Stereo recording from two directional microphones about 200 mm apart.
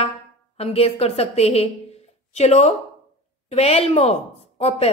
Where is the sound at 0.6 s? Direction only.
30° left (ahead or behind).